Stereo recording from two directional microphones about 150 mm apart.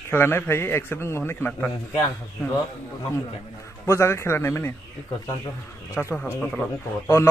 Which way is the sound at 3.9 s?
20° left (ahead or behind).